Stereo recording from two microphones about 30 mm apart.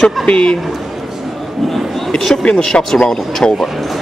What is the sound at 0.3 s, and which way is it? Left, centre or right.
Speech, left.